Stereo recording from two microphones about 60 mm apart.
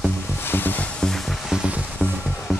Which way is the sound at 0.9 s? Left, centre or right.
Centre.